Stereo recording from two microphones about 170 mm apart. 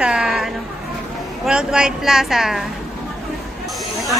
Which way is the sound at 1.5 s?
5° right (ahead or behind).